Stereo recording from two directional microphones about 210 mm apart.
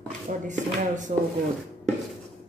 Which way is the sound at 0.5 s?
35° right (ahead or behind).